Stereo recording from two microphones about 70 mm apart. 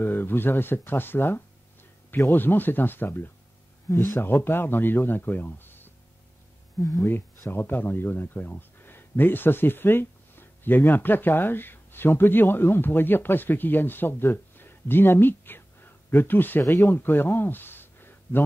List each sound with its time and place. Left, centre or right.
0.0 s speech: left
6.8 s speech: left
7.1 s speech: left